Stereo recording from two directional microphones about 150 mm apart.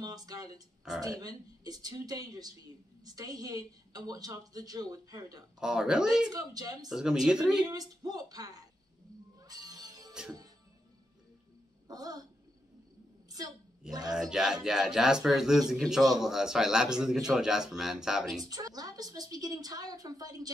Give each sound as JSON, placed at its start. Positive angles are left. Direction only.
{"t": 0.0, "sound": "a woman's voice", "side_deg": -25}
{"t": 5.6, "sound": "speech", "side_deg": -5}
{"t": 6.3, "sound": "a woman's voice", "side_deg": -25}
{"t": 6.9, "sound": "speech", "side_deg": -5}
{"t": 7.6, "sound": "a woman's voice", "side_deg": -25}
{"t": 9.4, "sound": "music", "side_deg": -25}
{"t": 11.9, "sound": "a woman's voice", "side_deg": -25}
{"t": 14.1, "sound": "speech", "side_deg": -5}
{"t": 18.5, "sound": "a woman's voice", "side_deg": -25}